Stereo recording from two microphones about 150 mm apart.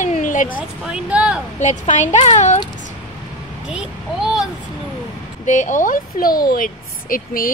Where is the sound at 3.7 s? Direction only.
5° right (ahead or behind).